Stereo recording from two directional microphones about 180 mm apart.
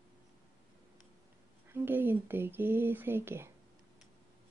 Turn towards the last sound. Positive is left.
turn(degrees=-15)  # may be behind; listen again after turning